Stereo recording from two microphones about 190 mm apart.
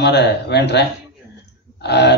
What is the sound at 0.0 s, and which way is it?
A man's voice, 65° left (ahead or behind).